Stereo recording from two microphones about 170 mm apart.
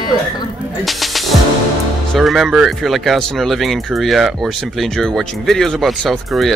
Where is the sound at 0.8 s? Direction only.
Centre (ahead or behind).